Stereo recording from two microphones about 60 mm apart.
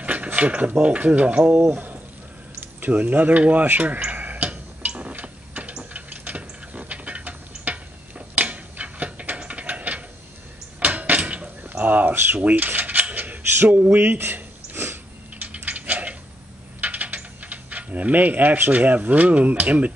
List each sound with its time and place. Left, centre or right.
0.0 s mechanisms: right
0.4 s speech: right
2.8 s speech: right
4.1 s a sound: right
12.4 s mechanisms: right
15.4 s a sound: right
16.8 s speech: right